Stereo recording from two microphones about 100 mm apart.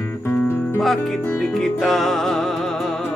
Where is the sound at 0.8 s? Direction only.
Centre (ahead or behind).